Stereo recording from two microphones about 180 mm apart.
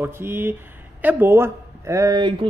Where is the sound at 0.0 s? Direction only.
10° right (ahead or behind).